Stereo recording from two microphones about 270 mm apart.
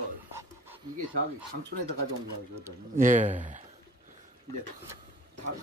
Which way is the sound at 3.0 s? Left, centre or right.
Right.